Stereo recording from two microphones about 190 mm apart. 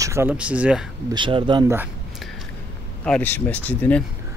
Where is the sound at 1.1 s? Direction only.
25° right (ahead or behind).